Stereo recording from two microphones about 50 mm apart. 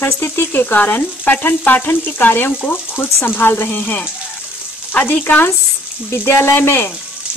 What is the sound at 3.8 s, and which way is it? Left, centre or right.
Frying, left.